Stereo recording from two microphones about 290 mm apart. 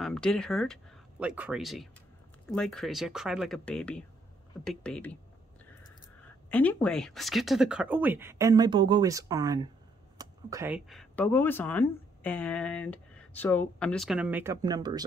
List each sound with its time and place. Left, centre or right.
0.0 s speech: centre
6.5 s speech: centre